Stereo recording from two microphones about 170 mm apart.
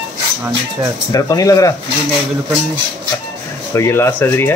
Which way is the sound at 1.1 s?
20° left (ahead or behind).